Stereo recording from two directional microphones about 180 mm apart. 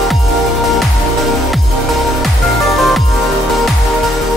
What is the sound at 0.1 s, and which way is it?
Music, centre (ahead or behind).